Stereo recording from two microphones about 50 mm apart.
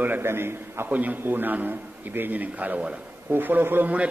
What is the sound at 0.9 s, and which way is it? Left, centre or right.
A man's voice, right.